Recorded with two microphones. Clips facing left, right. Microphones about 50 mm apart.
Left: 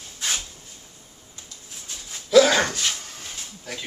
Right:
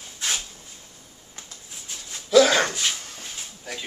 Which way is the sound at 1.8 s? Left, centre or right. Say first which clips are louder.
Even; centre.